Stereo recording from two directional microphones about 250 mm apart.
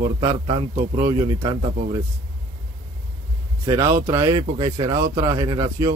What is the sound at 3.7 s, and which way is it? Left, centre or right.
Speech, centre.